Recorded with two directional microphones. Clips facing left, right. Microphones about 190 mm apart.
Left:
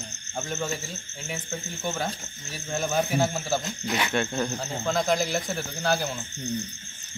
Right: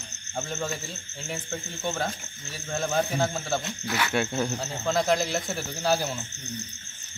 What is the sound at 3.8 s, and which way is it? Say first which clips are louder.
Speech: left 1 dB; 20° left (ahead or behind).